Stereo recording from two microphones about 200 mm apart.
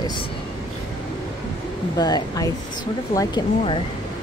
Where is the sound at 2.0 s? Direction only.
20° left (ahead or behind).